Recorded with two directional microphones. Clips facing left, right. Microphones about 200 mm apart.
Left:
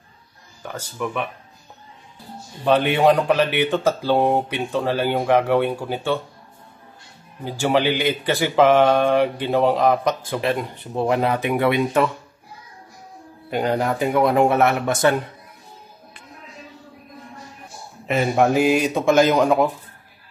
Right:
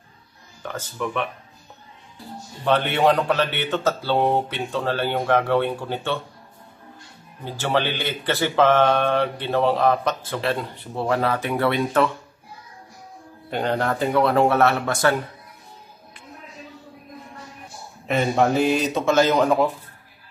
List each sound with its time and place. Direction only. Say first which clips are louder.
0.6 s speech: left 1 dB; 10° left (ahead or behind)
2.6 s speech: left 3 dB; 15° left (ahead or behind)
7.4 s speech: left 4 dB; 15° left (ahead or behind)
13.5 s speech: left 2 dB; 10° left (ahead or behind)
18.0 s speech: left 2 dB; 5° left (ahead or behind)